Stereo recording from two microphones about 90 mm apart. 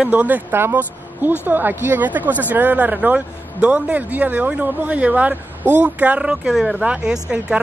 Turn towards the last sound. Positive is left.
turn(degrees=-10)  # may be behind; listen again after turning